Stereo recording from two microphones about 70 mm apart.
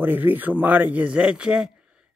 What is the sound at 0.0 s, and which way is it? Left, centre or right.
A man's voice, right.